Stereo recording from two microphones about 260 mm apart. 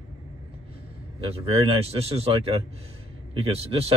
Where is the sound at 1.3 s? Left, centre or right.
Right.